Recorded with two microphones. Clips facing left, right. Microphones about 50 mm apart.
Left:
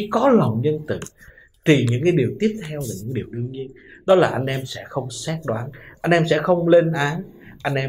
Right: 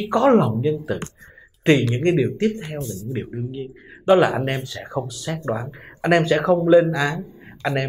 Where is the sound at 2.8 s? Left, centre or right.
Right.